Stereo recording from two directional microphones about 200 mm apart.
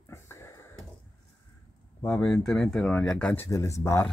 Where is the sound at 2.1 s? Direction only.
5° left (ahead or behind).